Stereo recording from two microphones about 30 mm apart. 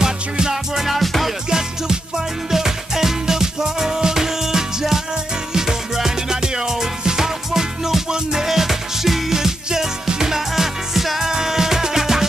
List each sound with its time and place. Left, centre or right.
0.0 s music: right
0.7 s music: centre
1.5 s music: right
8.5 s music: centre
10.5 s music: centre